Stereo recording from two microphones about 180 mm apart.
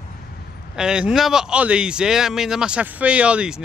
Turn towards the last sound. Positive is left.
turn(degrees=-5)  # may be behind; listen again after turning